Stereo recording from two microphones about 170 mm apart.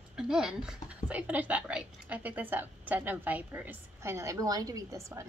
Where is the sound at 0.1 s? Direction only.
5° right (ahead or behind).